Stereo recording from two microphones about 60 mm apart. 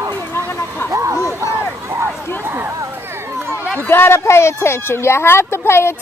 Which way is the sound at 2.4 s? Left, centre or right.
Right.